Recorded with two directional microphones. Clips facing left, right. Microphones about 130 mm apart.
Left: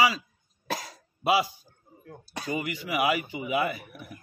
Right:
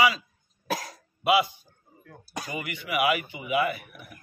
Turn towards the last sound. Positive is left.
turn(degrees=35)  # may be behind; listen again after turning